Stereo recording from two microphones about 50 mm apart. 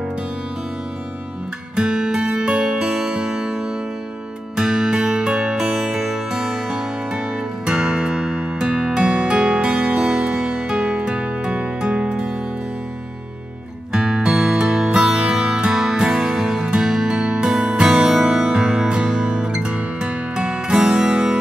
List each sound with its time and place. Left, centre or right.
1.8 s music: centre
13.9 s music: centre